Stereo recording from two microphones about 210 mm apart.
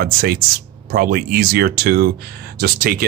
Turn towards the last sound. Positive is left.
turn(degrees=-45)  # may be behind; listen again after turning